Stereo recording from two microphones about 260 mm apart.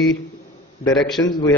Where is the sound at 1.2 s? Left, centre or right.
Centre.